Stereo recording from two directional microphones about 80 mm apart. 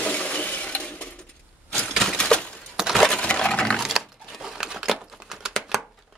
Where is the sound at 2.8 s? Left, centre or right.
Centre.